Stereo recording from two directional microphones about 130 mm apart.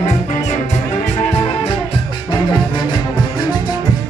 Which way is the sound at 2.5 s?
35° left (ahead or behind).